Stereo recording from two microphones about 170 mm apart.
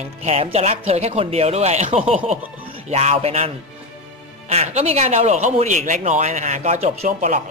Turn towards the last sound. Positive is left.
turn(degrees=-45)  # may be behind; listen again after turning